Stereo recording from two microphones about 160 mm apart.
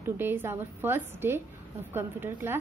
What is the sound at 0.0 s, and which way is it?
A woman's voice, 15° right (ahead or behind).